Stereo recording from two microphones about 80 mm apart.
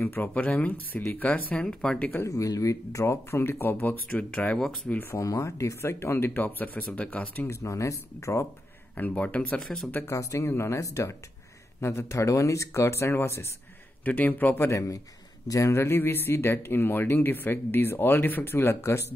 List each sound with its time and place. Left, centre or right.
0.0 s speech: left
2.2 s speech: left; by 4.6 s centre
5.1 s speech: left; by 7.4 s centre
7.4 s speech: left
8.9 s speech: centre
9.6 s speech: centre
10.0 s speech: left
14.0 s speech: left
14.7 s speech: left